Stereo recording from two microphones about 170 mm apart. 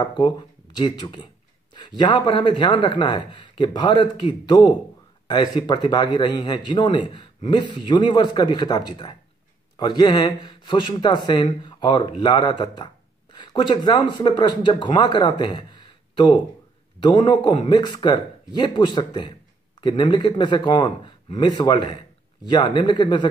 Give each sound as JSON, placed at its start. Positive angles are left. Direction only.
{"t": 0.0, "sound": "speech", "side_deg": 25}